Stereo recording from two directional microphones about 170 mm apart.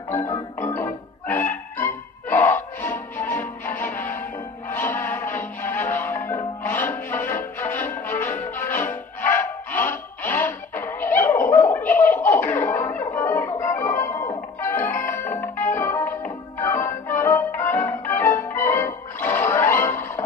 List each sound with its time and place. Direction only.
0.1 s music: 15° left (ahead or behind)